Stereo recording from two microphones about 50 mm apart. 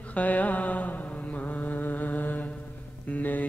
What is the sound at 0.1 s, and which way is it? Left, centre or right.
Mantra, left.